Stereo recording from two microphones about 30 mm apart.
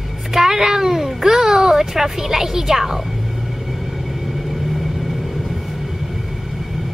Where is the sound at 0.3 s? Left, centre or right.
Centre.